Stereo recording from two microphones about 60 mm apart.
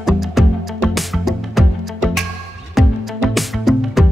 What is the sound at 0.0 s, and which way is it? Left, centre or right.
Music, centre.